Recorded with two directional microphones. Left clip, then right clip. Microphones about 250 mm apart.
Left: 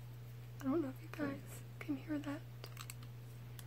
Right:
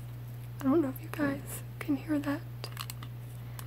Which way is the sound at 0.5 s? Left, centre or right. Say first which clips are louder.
Right 10 dB; centre.